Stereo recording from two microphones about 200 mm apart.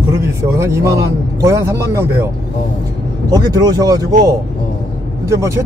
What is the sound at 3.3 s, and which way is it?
Speech, 20° right (ahead or behind).